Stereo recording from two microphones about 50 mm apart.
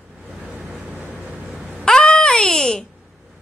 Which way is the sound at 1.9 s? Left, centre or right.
Centre.